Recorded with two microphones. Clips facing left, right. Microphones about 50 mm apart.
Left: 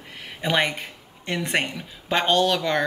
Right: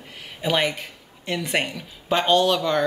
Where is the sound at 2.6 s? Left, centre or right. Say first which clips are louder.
Right 2 dB; centre.